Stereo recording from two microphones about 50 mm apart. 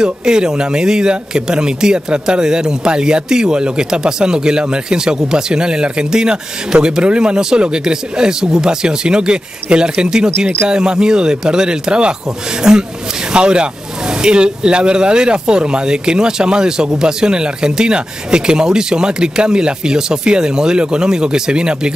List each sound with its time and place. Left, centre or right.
0.0 s speech: centre